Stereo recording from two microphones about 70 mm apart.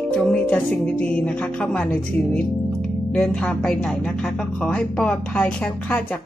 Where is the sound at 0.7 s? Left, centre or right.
Centre.